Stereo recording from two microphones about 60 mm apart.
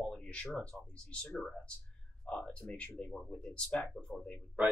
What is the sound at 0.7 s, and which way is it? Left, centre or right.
A man's voice, centre.